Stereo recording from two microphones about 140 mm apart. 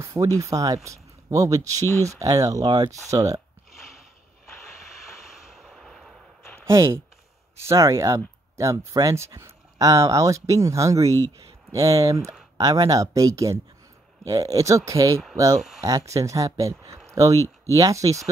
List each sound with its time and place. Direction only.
0.0 s speech: 20° right (ahead or behind)
5.2 s vehicle: centre (ahead or behind)
6.6 s speech: 20° right (ahead or behind)